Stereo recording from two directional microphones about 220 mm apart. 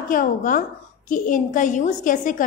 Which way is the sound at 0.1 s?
35° left (ahead or behind).